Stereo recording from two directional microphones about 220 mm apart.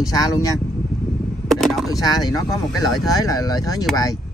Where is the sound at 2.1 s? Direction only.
15° left (ahead or behind).